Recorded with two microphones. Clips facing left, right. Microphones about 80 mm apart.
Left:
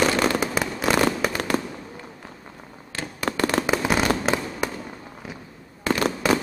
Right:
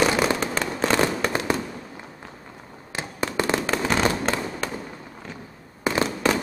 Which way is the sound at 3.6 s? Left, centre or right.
Centre.